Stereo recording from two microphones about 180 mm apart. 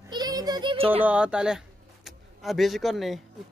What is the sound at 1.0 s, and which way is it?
Speech, 5° right (ahead or behind).